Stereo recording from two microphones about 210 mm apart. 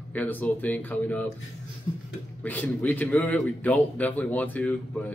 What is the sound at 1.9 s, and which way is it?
Speech, 25° left (ahead or behind).